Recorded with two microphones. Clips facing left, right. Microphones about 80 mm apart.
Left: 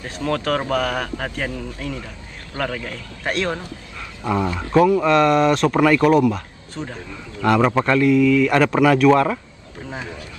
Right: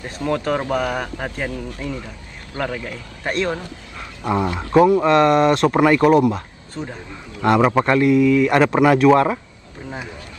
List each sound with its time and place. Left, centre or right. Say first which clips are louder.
0.2 s a man's voice: right 1 dB; centre
2.5 s a man's voice: even; centre
7.4 s speech: right 1 dB; right